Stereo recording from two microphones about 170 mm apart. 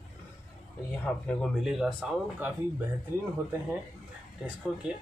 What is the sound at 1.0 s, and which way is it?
Speech, 5° left (ahead or behind).